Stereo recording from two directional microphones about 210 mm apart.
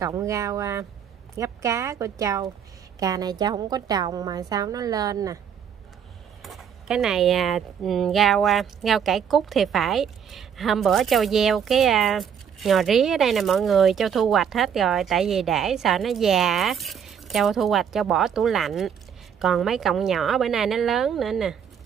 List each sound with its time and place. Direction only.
0.0 s a woman's voice: 15° right (ahead or behind)
6.4 s speech: centre (ahead or behind)